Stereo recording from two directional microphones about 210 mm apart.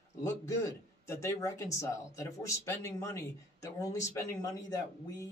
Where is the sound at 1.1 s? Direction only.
15° left (ahead or behind).